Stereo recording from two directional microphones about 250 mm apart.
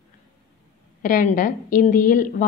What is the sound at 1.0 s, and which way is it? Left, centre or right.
A woman's voice, left.